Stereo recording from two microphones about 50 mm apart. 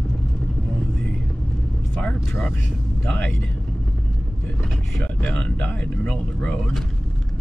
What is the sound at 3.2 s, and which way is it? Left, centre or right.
Speech, left.